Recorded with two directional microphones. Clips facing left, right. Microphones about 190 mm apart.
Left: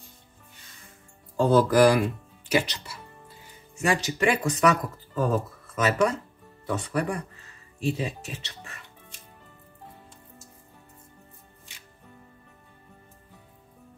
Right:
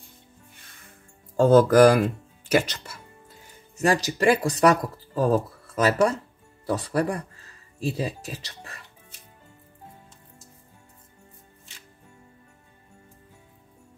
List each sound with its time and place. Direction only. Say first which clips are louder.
1.3 s speech: right 4 dB; 45° right (ahead or behind)
3.8 s speech: right 3 dB; 35° right (ahead or behind)